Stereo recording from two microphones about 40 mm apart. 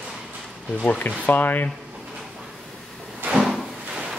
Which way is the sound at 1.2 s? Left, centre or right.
Left.